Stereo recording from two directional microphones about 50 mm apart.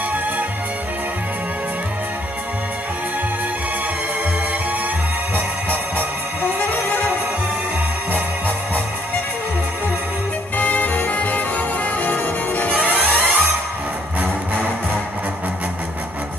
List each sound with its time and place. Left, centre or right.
6.4 s music: left
10.6 s music: left
12.7 s music: right